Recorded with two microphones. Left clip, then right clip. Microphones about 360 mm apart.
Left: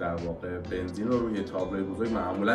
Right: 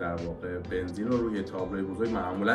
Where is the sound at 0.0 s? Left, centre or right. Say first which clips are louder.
Left 1 dB; centre.